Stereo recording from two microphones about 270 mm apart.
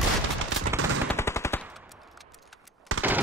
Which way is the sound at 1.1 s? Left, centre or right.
Centre.